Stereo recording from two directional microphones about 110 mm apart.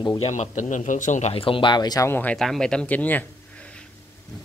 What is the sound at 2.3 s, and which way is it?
Speech, 5° left (ahead or behind).